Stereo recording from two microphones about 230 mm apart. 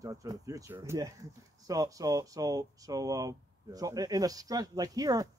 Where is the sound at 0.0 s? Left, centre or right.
Centre.